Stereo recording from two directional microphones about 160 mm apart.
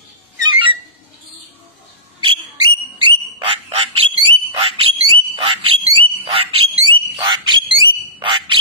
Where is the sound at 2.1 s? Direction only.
30° right (ahead or behind).